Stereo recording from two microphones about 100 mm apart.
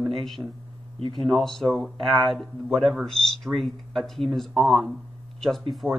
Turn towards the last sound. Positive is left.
turn(degrees=0)  # may be behind; listen again after turning